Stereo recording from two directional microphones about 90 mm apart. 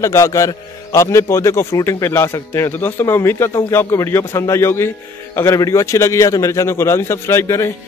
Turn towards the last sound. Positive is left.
turn(degrees=30)  # may be behind; listen again after turning